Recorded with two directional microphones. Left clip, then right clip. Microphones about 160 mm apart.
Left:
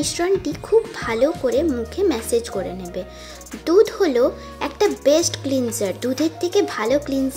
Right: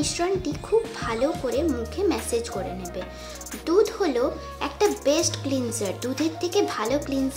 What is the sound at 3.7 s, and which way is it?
A child's voice, 30° left (ahead or behind).